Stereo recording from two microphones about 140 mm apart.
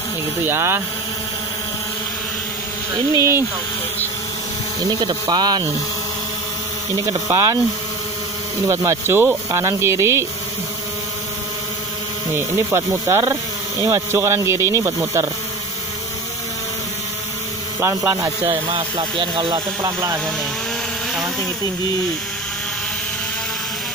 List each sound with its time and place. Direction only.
0.4 s speech: 15° right (ahead or behind)
3.2 s speech: 20° right (ahead or behind)
4.8 s speech: 30° right (ahead or behind)
7.1 s speech: 25° right (ahead or behind)
8.6 s speech: 20° right (ahead or behind)
12.4 s speech: 15° right (ahead or behind)
17.7 s speech: 15° right (ahead or behind)
18.5 s speech: 40° right (ahead or behind)
19.8 s speech: 25° right (ahead or behind)